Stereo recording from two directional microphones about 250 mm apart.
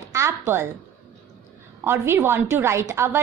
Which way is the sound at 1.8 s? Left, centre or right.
Centre.